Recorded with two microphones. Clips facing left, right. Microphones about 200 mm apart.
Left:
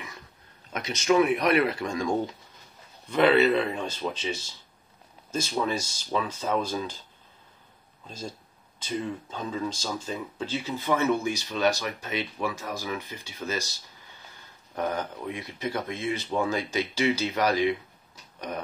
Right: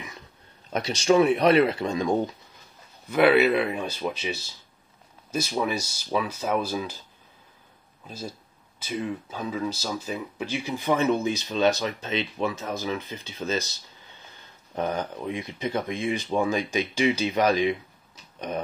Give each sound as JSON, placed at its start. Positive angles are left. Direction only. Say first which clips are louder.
{"t": 0.7, "sound": "speech", "louder": "right 2 dB", "side_deg": -30}
{"t": 3.1, "sound": "speech", "louder": "right 1 dB", "side_deg": -10}
{"t": 8.1, "sound": "speech", "louder": "right 1 dB", "side_deg": -10}
{"t": 14.8, "sound": "speech", "louder": "right 2 dB", "side_deg": -20}